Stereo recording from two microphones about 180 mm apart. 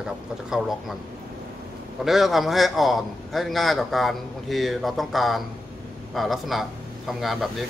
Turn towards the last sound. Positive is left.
turn(degrees=0)  # may be behind; listen again after turning